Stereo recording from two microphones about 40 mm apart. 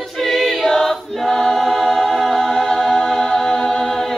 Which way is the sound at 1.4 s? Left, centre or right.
Centre.